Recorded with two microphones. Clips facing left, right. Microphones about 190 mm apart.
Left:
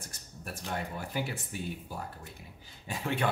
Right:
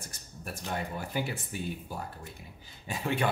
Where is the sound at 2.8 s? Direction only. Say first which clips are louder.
Right 2 dB; 10° right (ahead or behind).